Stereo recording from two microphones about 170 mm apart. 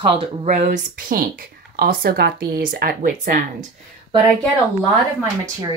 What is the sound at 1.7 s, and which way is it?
Speech, 65° right (ahead or behind).